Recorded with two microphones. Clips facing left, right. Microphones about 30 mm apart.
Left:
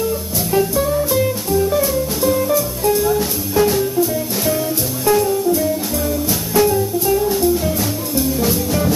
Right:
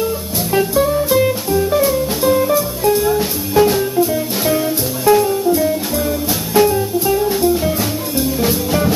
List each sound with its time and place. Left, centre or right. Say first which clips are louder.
0.0 s music: right 1 dB; centre
6.5 s music: right 2 dB; centre